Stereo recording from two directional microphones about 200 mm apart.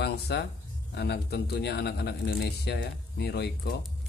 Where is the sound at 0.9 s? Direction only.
55° left (ahead or behind).